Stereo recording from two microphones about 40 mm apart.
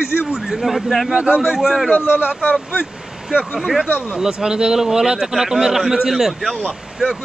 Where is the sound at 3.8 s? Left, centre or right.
Left.